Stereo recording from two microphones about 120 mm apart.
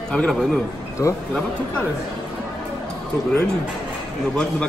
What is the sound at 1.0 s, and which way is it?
Speech, 25° left (ahead or behind).